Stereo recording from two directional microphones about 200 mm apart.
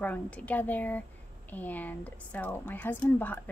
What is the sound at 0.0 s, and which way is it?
Speech, 5° left (ahead or behind).